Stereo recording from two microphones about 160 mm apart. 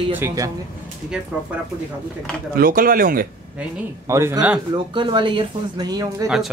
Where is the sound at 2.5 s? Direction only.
65° right (ahead or behind).